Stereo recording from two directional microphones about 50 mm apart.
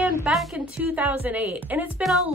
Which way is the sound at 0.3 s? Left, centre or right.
Right.